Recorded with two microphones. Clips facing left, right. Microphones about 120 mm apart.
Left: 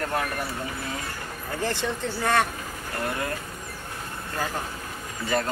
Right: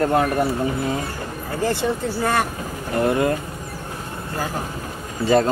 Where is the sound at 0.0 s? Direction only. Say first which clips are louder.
Right 10 dB; 30° right (ahead or behind).